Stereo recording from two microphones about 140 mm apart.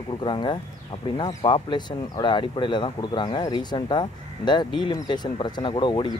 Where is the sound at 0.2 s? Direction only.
35° left (ahead or behind).